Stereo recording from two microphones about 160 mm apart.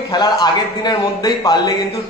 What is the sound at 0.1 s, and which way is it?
A man's voice, 25° left (ahead or behind).